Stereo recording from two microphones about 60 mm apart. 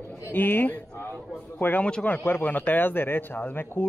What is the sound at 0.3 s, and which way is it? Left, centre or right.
Speech, left.